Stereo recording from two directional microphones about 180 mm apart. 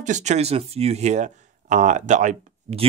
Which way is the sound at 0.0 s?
40° right (ahead or behind).